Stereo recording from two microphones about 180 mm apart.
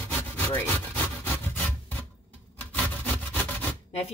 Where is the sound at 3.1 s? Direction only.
10° left (ahead or behind).